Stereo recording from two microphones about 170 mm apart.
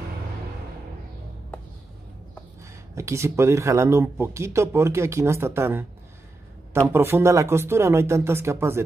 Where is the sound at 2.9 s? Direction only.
15° right (ahead or behind).